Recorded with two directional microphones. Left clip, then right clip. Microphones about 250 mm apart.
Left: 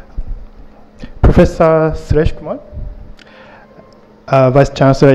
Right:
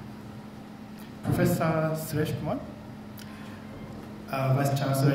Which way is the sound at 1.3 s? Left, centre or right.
Left.